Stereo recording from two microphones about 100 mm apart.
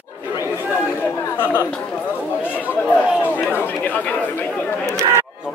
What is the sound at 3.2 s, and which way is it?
Speech, 15° left (ahead or behind).